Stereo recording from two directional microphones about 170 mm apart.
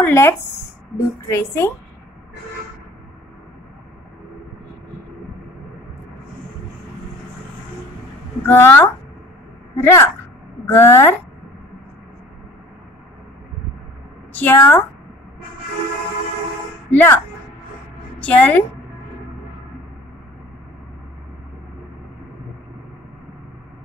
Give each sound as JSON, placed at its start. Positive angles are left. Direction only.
{"t": 0.0, "sound": "a woman's voice", "side_deg": 15}
{"t": 8.5, "sound": "a woman's voice", "side_deg": 15}
{"t": 14.3, "sound": "a woman's voice", "side_deg": 10}
{"t": 16.9, "sound": "a woman's voice", "side_deg": 10}
{"t": 18.2, "sound": "a woman's voice", "side_deg": 10}